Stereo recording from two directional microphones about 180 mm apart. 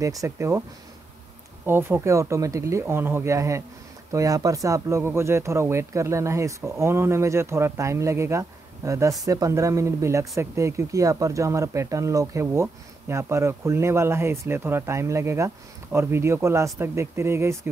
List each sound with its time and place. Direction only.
0.0 s speech: 20° right (ahead or behind)
1.7 s speech: 15° right (ahead or behind)